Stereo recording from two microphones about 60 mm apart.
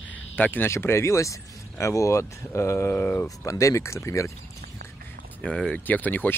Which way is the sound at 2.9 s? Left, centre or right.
Left.